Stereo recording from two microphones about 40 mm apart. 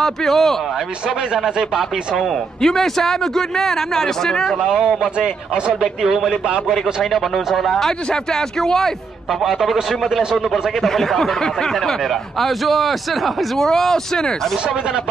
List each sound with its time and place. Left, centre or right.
0.0 s speech: centre
1.0 s speech: centre
2.6 s a man's voice: centre
4.6 s a man's voice: centre
6.7 s speech: centre
8.1 s a man's voice: centre
9.3 s speech: centre
10.8 s speech: centre
13.6 s a man's voice: centre